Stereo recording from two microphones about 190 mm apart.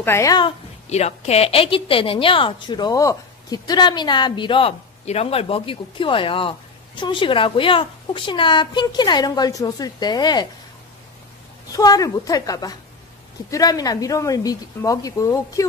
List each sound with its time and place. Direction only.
0.0 s a woman's voice: 15° left (ahead or behind)
0.8 s a woman's voice: 35° left (ahead or behind)
11.7 s a woman's voice: 20° left (ahead or behind)